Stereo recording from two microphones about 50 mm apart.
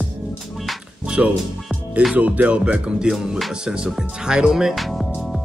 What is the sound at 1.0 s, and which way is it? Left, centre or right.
Speech, right.